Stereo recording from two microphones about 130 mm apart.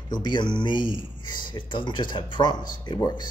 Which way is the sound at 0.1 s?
35° left (ahead or behind).